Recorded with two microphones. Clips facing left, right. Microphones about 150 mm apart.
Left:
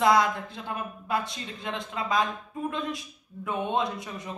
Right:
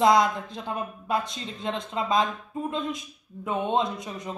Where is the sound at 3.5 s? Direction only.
20° right (ahead or behind).